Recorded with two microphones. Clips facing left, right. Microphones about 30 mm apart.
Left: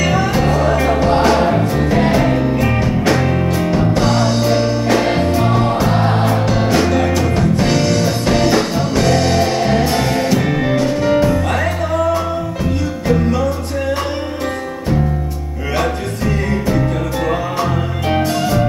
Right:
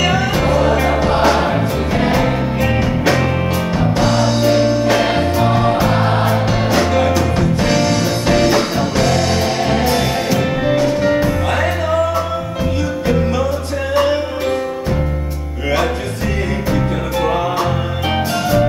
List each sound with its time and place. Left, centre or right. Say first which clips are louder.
0.0 s music: even; centre
3.7 s music: even; centre
13.0 s music: left 2 dB; centre
16.6 s music: left 1 dB; centre